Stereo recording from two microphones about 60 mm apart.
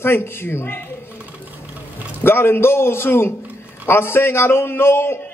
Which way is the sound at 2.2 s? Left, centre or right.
Left.